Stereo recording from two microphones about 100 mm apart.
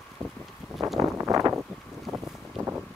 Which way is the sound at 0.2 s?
10° left (ahead or behind).